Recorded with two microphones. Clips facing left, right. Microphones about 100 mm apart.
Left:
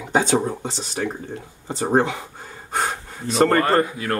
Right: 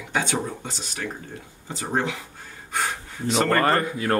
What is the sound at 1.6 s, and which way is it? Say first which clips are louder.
Speech: left 7 dB; 35° left (ahead or behind).